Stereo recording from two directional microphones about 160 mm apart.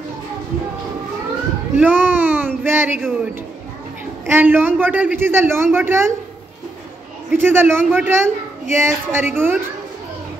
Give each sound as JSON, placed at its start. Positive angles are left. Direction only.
{"t": 1.8, "sound": "a sound", "side_deg": -10}
{"t": 4.3, "sound": "speech", "side_deg": -15}
{"t": 7.2, "sound": "speech", "side_deg": -15}